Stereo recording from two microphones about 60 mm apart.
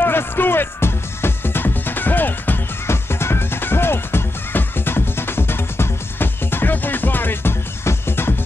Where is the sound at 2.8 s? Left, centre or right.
Left.